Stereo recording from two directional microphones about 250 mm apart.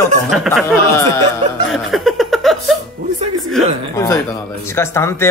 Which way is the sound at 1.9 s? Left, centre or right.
Centre.